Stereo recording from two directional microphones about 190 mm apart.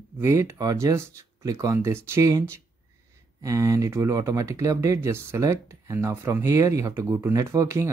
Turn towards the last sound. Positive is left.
turn(degrees=-15)  # may be behind; listen again after turning